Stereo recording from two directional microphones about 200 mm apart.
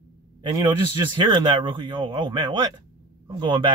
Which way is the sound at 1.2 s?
25° right (ahead or behind).